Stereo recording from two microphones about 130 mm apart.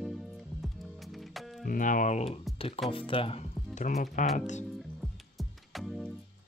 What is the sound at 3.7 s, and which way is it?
Speech, 80° left.